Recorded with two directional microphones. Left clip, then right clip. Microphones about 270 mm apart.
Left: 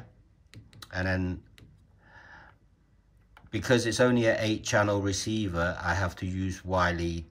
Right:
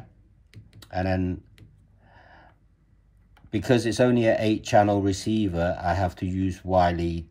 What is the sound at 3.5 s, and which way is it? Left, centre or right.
Speech, centre.